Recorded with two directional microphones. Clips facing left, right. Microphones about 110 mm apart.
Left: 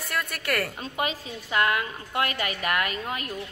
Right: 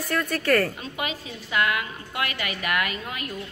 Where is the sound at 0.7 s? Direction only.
35° left (ahead or behind).